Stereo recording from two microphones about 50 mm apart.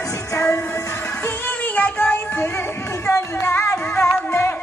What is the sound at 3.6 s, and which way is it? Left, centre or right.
Music, left.